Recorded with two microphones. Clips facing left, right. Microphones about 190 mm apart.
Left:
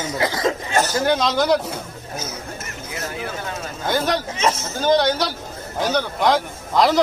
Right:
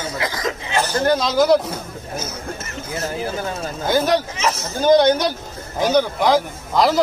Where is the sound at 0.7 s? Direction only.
45° left (ahead or behind).